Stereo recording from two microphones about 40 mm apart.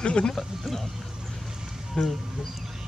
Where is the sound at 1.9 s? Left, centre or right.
Centre.